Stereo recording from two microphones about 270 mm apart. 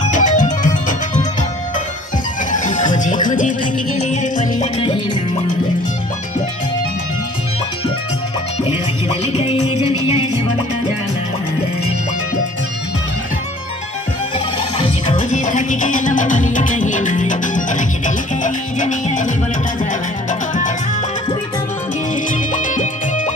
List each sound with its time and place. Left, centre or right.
0.1 s music: left
2.5 s music: left
9.3 s music: left
14.8 s music: left
22.3 s music: left